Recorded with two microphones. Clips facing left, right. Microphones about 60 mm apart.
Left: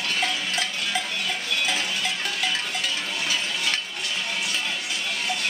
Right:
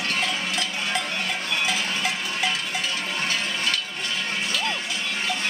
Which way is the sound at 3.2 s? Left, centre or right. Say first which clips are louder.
Right 1 dB; right.